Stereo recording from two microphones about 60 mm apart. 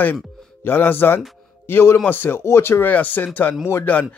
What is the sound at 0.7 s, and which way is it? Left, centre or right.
A man's voice, left.